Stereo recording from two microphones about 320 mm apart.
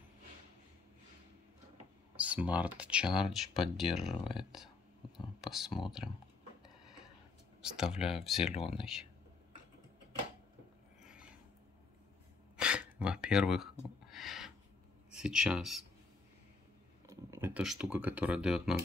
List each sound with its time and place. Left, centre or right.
2.1 s speech: centre
7.6 s speech: centre
8.5 s speech: centre
11.1 s a sound: centre
12.5 s gasp: centre
14.0 s a sound: centre
15.1 s speech: centre
17.0 s speech: centre